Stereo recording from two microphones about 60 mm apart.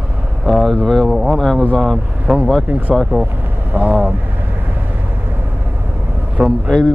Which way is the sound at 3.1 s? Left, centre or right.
Right.